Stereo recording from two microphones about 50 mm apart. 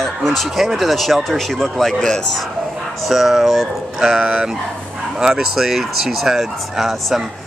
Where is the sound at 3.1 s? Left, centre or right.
Centre.